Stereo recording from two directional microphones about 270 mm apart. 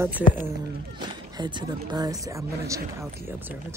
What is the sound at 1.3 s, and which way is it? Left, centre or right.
Speech, centre.